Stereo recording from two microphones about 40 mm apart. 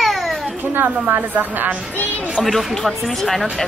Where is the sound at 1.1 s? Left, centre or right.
Right.